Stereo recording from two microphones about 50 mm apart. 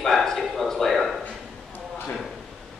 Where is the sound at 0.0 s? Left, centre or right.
Centre.